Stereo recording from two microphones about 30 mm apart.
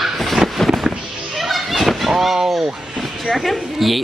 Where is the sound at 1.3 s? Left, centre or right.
Centre.